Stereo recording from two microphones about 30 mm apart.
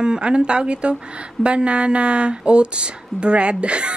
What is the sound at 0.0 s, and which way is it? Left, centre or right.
Speech, right.